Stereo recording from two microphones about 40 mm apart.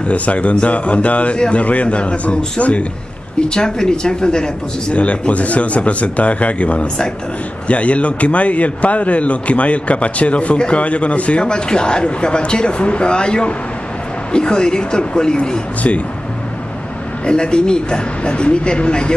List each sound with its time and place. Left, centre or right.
0.0 s a man's voice: left
3.3 s speech: left
4.9 s a man's voice: left
11.4 s speech: left
17.2 s speech: left